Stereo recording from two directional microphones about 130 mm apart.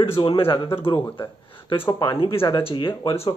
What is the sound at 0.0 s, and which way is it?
Speech, 45° left (ahead or behind).